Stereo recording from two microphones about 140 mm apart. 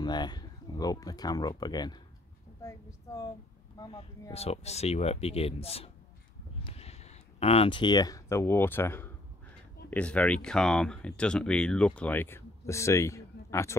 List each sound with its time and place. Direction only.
0.0 s speech: 30° left (ahead or behind)
4.3 s speech: 45° left (ahead or behind); by 13.7 s 20° left (ahead or behind)